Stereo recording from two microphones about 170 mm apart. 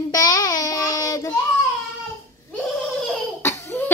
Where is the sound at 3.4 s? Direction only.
15° left (ahead or behind).